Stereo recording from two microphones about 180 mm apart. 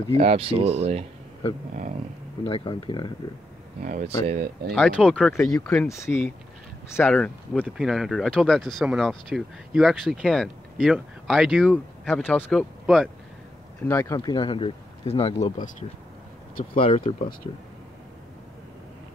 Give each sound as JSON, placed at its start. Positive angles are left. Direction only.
{"t": 0.1, "sound": "speech", "side_deg": -30}
{"t": 2.4, "sound": "speech", "side_deg": 30}
{"t": 3.8, "sound": "speech", "side_deg": -45}
{"t": 4.3, "sound": "speech", "side_deg": -60}
{"t": 4.7, "sound": "speech", "side_deg": 5}
{"t": 5.9, "sound": "speech", "side_deg": 15}
{"t": 7.6, "sound": "speech", "side_deg": -5}
{"t": 13.8, "sound": "speech", "side_deg": 15}
{"t": 16.7, "sound": "speech", "side_deg": 30}
{"t": 17.2, "sound": "speech", "side_deg": 50}